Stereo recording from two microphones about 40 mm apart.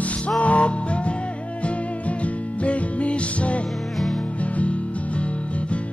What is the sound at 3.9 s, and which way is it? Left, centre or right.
Music, centre.